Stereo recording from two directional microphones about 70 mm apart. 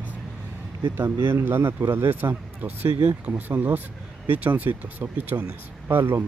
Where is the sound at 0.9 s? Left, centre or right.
Right.